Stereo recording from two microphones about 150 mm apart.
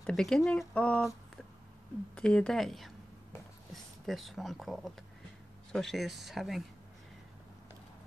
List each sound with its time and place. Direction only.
0.0 s speech: 5° left (ahead or behind)
2.1 s speech: 5° left (ahead or behind)
4.0 s speech: centre (ahead or behind)